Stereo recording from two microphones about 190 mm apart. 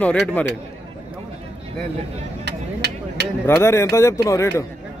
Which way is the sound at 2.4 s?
65° right (ahead or behind).